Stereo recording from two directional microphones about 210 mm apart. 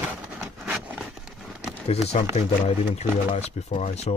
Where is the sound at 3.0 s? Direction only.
30° left (ahead or behind).